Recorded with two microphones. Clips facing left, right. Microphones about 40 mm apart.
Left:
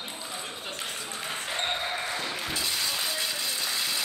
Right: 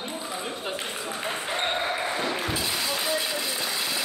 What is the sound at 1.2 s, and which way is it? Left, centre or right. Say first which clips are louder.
Basketball bounce: right 3 dB; centre.